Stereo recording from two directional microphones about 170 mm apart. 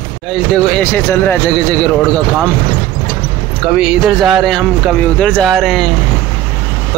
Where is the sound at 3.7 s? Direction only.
5° right (ahead or behind).